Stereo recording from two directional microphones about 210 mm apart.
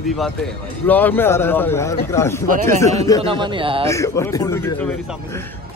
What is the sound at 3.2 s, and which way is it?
Speech, 25° right (ahead or behind).